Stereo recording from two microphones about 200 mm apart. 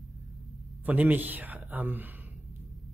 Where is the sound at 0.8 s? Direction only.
10° right (ahead or behind).